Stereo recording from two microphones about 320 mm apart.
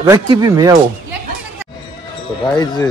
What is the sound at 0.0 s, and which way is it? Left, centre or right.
Speech, centre.